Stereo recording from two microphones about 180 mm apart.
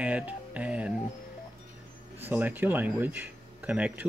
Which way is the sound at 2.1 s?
10° right (ahead or behind).